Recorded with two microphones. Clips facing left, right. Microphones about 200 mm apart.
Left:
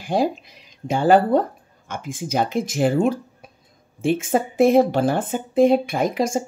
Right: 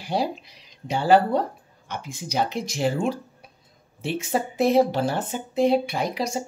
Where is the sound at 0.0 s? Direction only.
50° left (ahead or behind).